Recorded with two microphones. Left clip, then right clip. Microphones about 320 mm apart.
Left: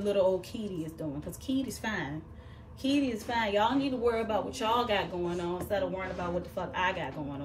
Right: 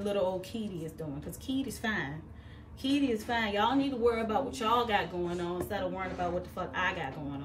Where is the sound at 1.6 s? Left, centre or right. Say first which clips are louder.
Right 1 dB; centre.